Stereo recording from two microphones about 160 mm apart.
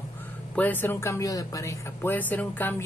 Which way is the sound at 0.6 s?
10° left (ahead or behind).